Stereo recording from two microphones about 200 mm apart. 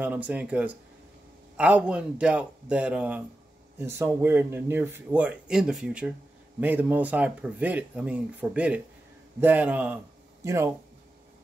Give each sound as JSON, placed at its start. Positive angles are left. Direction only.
{"t": 0.0, "sound": "speech", "side_deg": -10}